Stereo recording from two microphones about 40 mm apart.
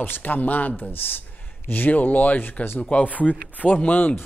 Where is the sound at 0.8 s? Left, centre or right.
Left.